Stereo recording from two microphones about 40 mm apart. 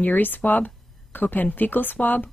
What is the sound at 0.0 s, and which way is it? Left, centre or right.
Speech, left.